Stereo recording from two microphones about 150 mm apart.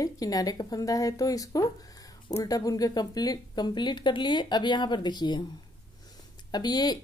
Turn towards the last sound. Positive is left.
turn(degrees=25)  # may be behind; listen again after turning